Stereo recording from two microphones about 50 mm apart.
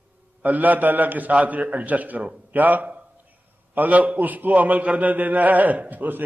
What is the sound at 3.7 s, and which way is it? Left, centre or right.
A man's voice, right.